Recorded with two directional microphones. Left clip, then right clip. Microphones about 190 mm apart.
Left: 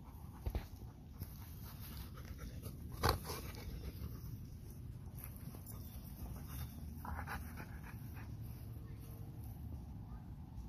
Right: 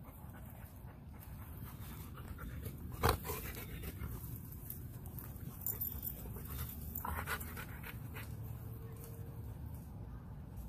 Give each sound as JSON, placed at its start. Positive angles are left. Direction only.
{"t": 2.6, "sound": "dog", "side_deg": -15}
{"t": 7.0, "sound": "dog", "side_deg": -35}